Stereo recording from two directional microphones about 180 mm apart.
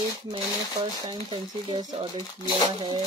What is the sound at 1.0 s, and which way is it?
Speech, 25° right (ahead or behind).